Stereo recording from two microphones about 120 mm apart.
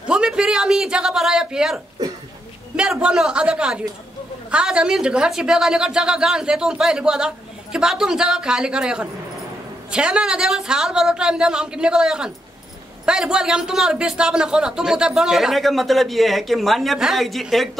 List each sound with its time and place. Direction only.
0.0 s a man's voice: 5° right (ahead or behind)